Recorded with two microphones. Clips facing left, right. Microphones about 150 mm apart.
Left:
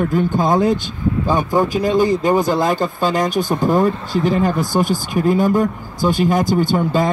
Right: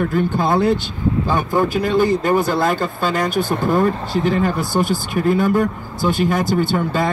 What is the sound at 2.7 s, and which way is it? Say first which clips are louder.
Speech: left 2 dB; 45° left (ahead or behind).